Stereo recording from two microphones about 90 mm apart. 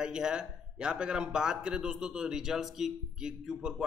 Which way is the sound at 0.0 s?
10° right (ahead or behind).